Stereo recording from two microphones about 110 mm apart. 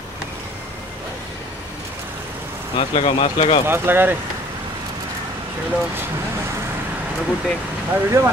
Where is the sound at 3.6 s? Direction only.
20° right (ahead or behind).